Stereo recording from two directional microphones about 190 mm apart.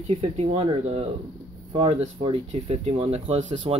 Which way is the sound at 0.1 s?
30° right (ahead or behind).